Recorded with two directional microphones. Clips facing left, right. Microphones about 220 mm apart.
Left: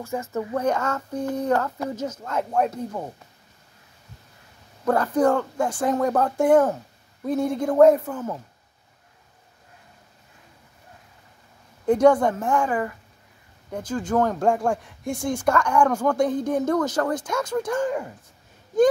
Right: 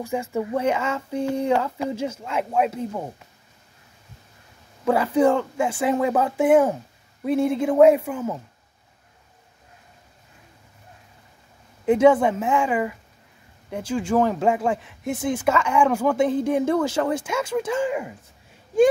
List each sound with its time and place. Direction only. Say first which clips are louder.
0.0 s speech: right 2 dB; 15° right (ahead or behind)
4.8 s speech: right 1 dB; 10° right (ahead or behind)
11.8 s speech: right 1 dB; 5° right (ahead or behind)